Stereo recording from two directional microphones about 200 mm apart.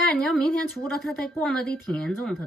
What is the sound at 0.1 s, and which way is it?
Speech, centre (ahead or behind).